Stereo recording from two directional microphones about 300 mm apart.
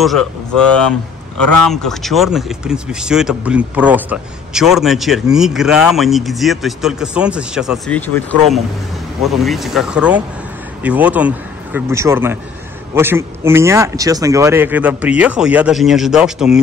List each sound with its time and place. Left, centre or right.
0.0 s speech: centre
1.4 s a man's voice: left
1.7 s speech: centre